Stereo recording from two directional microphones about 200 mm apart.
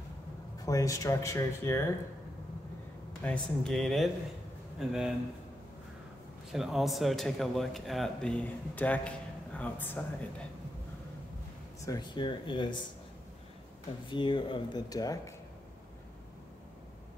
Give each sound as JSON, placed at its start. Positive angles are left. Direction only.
{"t": 0.6, "sound": "speech", "side_deg": 15}
{"t": 3.3, "sound": "a man's voice", "side_deg": 0}
{"t": 6.5, "sound": "a man's voice", "side_deg": 0}
{"t": 11.8, "sound": "speech", "side_deg": 20}
{"t": 14.0, "sound": "speech", "side_deg": 25}